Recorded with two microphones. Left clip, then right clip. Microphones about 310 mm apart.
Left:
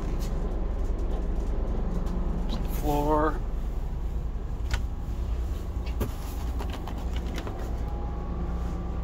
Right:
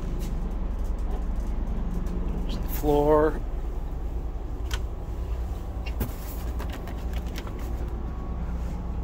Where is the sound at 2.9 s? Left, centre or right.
Centre.